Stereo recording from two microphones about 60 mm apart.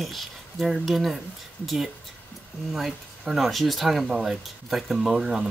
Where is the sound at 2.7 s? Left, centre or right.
Centre.